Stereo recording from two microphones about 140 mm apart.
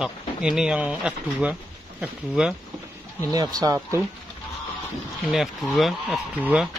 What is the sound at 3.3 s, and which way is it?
Speech, 25° right (ahead or behind).